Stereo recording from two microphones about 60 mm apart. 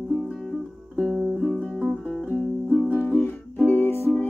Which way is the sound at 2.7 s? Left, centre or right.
Centre.